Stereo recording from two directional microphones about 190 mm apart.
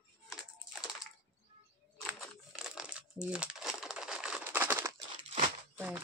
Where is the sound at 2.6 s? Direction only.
5° right (ahead or behind).